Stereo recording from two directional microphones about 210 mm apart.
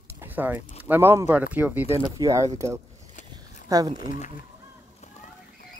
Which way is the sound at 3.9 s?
40° left (ahead or behind).